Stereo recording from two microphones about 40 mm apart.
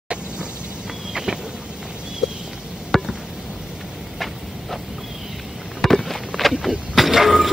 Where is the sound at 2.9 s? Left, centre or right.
Centre.